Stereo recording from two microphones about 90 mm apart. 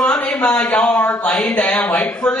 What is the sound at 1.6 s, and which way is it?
Speech, 20° left (ahead or behind).